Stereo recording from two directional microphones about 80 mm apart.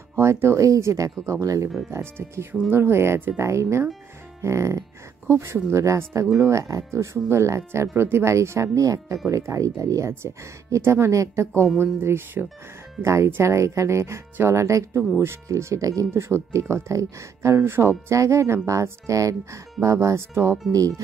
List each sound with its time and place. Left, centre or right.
0.1 s speech: right
16.1 s speech: right